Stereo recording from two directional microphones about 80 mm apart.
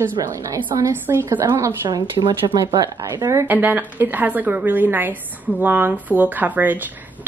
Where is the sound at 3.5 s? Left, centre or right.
Right.